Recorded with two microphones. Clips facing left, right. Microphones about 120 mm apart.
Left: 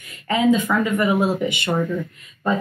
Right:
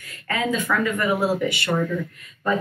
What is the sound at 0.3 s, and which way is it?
Speech, 20° left (ahead or behind).